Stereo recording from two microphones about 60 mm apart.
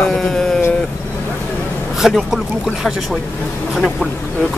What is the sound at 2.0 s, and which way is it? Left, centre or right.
Speech, centre.